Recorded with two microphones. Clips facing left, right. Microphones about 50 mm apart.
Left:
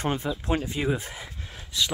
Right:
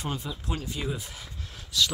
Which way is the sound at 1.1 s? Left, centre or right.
Left.